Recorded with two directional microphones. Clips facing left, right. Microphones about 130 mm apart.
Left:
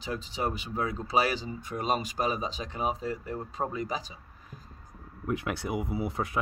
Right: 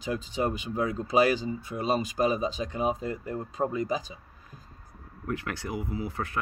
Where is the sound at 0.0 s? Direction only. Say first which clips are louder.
Right 3 dB; 45° right (ahead or behind).